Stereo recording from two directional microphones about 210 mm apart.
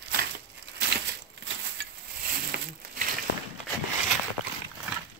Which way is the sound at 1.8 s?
55° right (ahead or behind).